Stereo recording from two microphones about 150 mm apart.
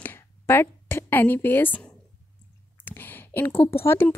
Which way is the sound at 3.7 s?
15° left (ahead or behind).